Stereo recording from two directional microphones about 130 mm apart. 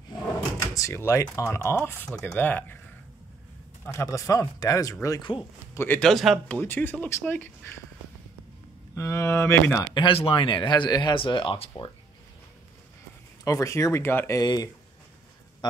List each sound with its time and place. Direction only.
0.6 s speech: 20° left (ahead or behind)
1.9 s speech: 10° left (ahead or behind)
3.8 s speech: 25° left (ahead or behind)
5.8 s speech: 15° left (ahead or behind)
6.0 s speech: centre (ahead or behind)
6.6 s speech: 15° left (ahead or behind)
8.9 s speech: 25° left (ahead or behind)
9.9 s speech: 40° left (ahead or behind)
13.4 s speech: 25° left (ahead or behind)
14.4 s speech: 30° left (ahead or behind)